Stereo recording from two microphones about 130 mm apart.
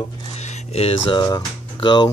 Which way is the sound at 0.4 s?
55° left (ahead or behind).